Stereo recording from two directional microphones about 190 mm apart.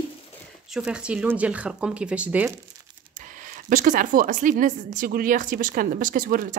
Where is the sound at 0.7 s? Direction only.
5° right (ahead or behind).